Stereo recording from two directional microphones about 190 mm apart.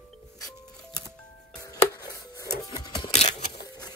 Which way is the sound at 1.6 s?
20° left (ahead or behind).